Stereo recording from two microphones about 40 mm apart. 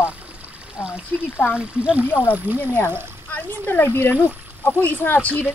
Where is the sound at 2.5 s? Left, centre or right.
Right.